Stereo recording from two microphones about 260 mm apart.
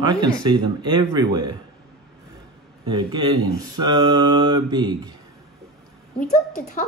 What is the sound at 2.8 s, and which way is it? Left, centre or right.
A man's voice, centre.